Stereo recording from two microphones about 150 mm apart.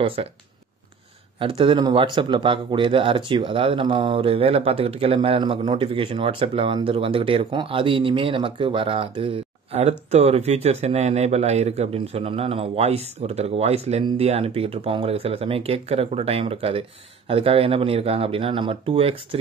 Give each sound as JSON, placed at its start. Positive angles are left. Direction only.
{"t": 0.0, "sound": "speech", "side_deg": -35}
{"t": 1.4, "sound": "speech", "side_deg": -35}